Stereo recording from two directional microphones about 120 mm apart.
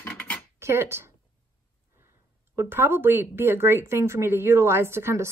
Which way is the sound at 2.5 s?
20° right (ahead or behind).